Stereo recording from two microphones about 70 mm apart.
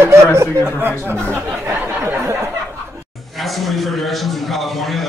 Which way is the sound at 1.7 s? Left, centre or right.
Right.